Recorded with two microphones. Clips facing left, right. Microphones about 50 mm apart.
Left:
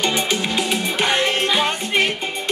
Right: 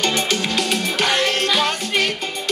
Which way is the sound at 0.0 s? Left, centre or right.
Centre.